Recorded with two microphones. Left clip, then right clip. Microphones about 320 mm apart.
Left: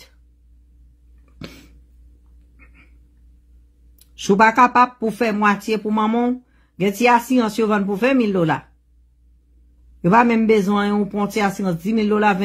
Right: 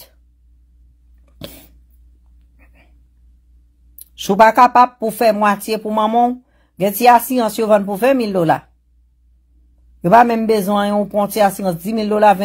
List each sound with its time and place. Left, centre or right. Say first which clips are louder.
1.4 s a sound: right 4 dB; centre
2.5 s cat: left 2 dB; centre
4.0 s speech: right 4 dB; right
10.0 s speech: right 4 dB; right